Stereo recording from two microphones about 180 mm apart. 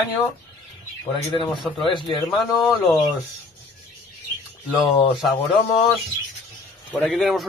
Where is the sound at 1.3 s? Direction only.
25° left (ahead or behind).